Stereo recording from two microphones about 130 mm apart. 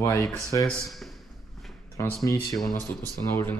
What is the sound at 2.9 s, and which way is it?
Speech, 15° left (ahead or behind).